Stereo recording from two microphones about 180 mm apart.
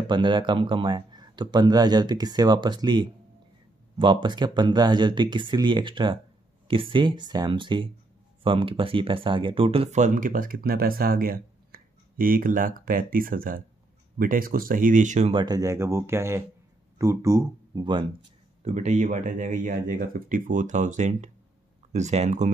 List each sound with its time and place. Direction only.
0.0 s speech: 25° right (ahead or behind)
15.4 s speech: 20° right (ahead or behind)
18.6 s speech: 40° right (ahead or behind)